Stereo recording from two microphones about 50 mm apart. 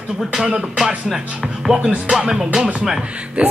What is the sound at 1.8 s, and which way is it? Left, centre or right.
Speech, centre.